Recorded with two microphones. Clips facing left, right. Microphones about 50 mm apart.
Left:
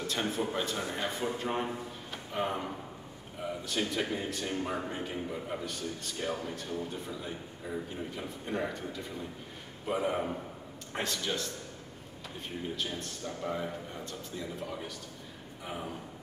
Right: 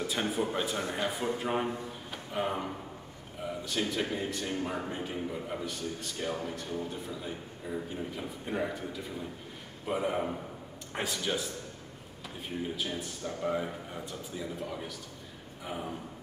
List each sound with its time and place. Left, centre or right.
0.0 s a man's voice: centre